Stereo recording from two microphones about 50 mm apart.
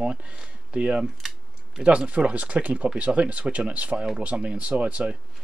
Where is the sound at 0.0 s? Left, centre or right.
Centre.